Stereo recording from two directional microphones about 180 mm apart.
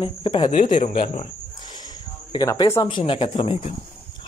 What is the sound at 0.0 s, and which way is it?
Speech, 25° left (ahead or behind).